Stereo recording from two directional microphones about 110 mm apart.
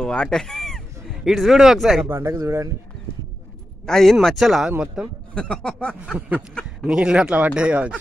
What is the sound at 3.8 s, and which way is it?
Speech, 5° left (ahead or behind).